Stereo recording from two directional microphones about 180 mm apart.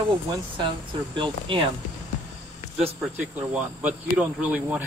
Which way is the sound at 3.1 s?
10° right (ahead or behind).